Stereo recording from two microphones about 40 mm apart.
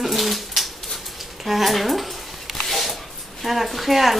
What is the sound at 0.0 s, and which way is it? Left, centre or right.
Pigeon, centre.